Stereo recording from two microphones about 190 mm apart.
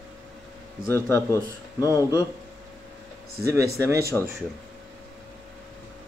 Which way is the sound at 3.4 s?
15° right (ahead or behind).